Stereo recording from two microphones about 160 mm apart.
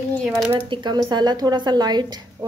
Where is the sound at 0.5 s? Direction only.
30° right (ahead or behind).